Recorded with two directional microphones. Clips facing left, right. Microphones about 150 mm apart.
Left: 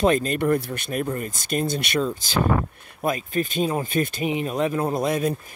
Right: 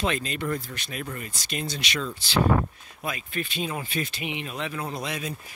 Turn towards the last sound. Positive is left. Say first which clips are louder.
# left 10 dB
turn(degrees=50)  # may be behind; listen again after turning